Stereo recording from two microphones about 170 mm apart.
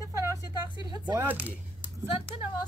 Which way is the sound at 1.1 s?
10° right (ahead or behind).